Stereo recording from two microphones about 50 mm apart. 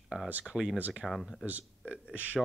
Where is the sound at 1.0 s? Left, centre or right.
Centre.